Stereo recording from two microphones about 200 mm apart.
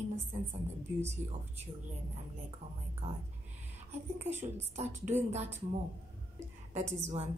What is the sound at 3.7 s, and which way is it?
A woman's voice, 35° right (ahead or behind).